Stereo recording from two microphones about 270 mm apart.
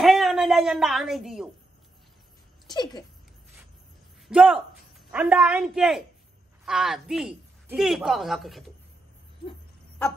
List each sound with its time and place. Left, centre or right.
0.0 s a sound: centre
2.7 s speech: centre
4.3 s speech: centre